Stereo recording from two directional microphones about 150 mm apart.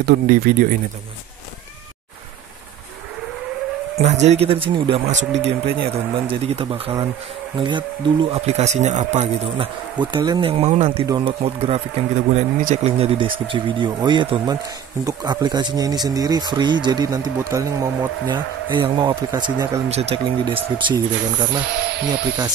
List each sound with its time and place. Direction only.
0.0 s speech: 80° right
4.0 s speech: 50° right (ahead or behind)
5.0 s speech: 50° right (ahead or behind)
5.8 s speech: 35° right (ahead or behind)
9.9 s speech: 30° right (ahead or behind)
19.9 s speech: 45° right (ahead or behind)